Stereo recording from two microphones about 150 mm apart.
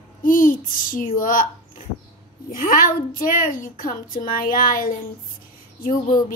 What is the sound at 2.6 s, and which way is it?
A woman's voice, 65° left (ahead or behind).